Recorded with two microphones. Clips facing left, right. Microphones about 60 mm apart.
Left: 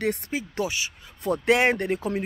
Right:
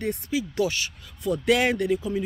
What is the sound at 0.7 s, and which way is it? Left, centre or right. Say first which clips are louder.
Speech: right 1 dB; centre.